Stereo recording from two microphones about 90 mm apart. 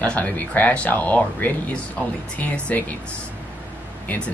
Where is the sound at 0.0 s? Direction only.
15° left (ahead or behind).